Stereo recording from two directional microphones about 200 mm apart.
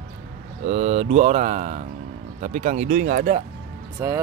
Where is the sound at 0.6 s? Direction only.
35° right (ahead or behind).